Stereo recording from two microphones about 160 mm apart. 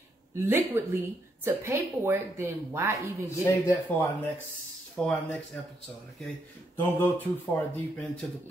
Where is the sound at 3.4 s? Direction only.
10° left (ahead or behind).